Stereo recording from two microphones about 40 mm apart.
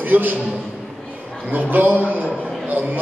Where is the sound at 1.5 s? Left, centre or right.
Right.